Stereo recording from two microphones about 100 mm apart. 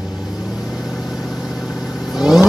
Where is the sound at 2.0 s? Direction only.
5° right (ahead or behind).